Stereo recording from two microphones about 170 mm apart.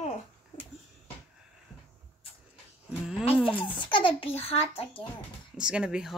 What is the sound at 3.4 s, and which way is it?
A child's voice, 30° left (ahead or behind).